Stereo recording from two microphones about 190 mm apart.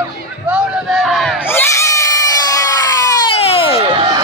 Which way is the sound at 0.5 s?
Centre (ahead or behind).